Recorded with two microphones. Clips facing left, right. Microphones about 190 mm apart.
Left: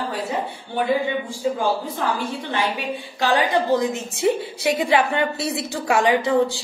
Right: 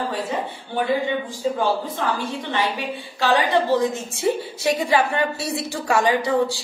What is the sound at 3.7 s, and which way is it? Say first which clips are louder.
Speech: even; 15° left (ahead or behind).